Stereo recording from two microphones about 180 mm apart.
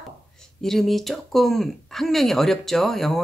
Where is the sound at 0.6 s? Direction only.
Centre (ahead or behind).